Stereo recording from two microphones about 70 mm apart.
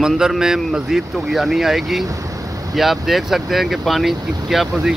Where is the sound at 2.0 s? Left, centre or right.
Right.